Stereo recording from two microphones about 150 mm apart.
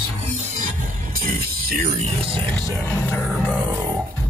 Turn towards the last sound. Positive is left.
turn(degrees=15)  # may be behind; listen again after turning